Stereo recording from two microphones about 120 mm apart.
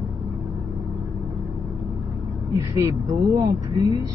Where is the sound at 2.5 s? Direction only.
25° right (ahead or behind).